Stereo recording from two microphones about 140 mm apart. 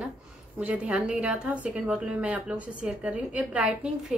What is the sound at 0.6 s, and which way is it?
Speech, 10° right (ahead or behind).